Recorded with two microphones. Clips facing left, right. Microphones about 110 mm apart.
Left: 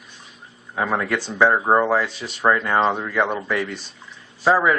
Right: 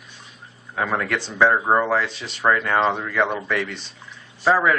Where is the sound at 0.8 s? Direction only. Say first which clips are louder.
Left 1 dB; 15° left (ahead or behind).